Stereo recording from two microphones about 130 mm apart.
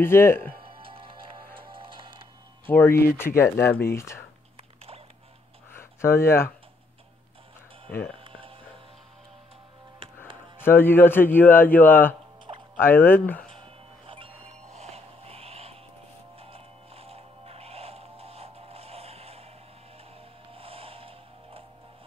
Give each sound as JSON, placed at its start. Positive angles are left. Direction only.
{"t": 0.0, "sound": "speech", "side_deg": 15}
{"t": 0.8, "sound": "music", "side_deg": -40}
{"t": 2.6, "sound": "speech", "side_deg": 15}
{"t": 5.7, "sound": "a sound", "side_deg": 20}
{"t": 7.9, "sound": "speech", "side_deg": 15}
{"t": 8.2, "sound": "a sound", "side_deg": -45}
{"t": 10.6, "sound": "speech", "side_deg": 15}
{"t": 13.5, "sound": "music", "side_deg": -40}
{"t": 20.5, "sound": "a sound", "side_deg": -45}